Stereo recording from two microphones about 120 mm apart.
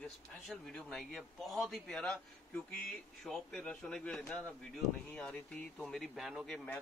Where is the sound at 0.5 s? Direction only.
5° left (ahead or behind).